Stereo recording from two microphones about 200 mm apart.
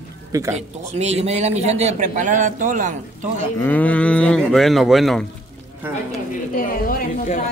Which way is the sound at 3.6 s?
10° left (ahead or behind).